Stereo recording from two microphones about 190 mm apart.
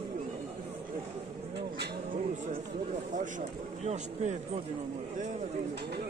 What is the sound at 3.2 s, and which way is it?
A man's voice, 40° right (ahead or behind).